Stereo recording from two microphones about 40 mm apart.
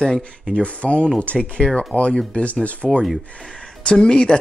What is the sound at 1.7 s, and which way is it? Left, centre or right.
Speech, left.